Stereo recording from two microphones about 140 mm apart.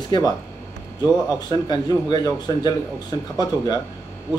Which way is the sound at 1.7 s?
30° left (ahead or behind).